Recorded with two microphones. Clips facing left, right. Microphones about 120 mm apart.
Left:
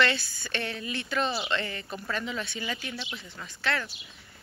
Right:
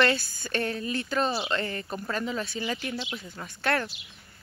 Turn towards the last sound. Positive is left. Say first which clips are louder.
# right 4 dB
turn(degrees=-45)  # may be behind; listen again after turning